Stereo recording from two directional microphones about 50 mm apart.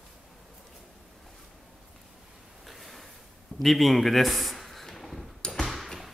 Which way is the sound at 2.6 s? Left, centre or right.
Centre.